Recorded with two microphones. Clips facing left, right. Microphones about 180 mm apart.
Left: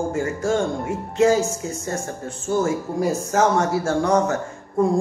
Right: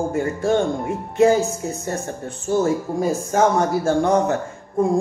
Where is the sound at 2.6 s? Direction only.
25° right (ahead or behind).